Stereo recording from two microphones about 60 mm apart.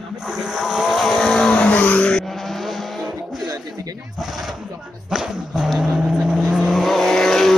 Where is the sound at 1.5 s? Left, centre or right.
Left.